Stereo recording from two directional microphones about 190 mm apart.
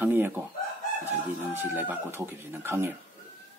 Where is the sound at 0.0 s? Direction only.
10° right (ahead or behind).